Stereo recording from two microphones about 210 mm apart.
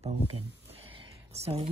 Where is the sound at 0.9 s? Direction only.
30° right (ahead or behind).